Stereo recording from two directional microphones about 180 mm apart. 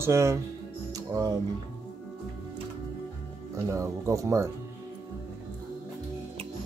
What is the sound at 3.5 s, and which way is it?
Speech, 15° right (ahead or behind).